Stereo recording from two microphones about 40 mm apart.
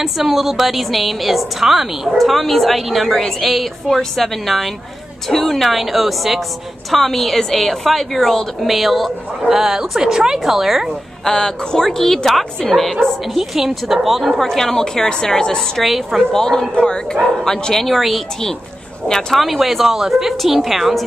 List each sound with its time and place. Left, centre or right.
0.0 s a woman's voice: centre
8.6 s a woman's voice: centre
9.5 s speech: centre
11.2 s a woman's voice: centre
14.4 s a woman's voice: centre
15.8 s a woman's voice: centre
16.3 s a woman's voice: centre
17.8 s a woman's voice: centre
19.3 s a woman's voice: centre